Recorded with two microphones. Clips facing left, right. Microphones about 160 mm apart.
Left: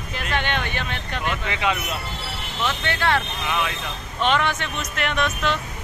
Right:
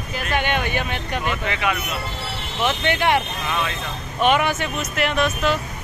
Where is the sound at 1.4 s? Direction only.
20° left (ahead or behind).